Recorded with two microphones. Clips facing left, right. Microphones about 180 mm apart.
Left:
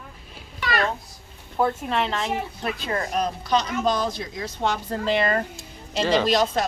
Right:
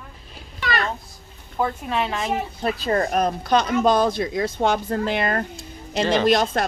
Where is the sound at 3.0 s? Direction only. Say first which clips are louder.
Right 5 dB; 55° right (ahead or behind).